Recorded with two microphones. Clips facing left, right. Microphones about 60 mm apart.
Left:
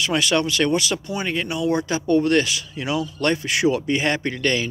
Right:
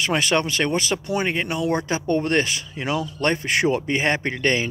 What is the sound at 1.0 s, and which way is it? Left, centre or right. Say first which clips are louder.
Speech: right 2 dB; right.